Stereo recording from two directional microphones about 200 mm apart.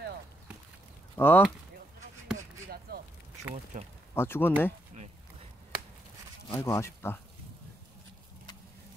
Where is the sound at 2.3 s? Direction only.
50° right (ahead or behind).